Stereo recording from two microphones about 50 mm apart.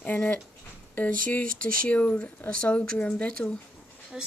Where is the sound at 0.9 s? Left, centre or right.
Left.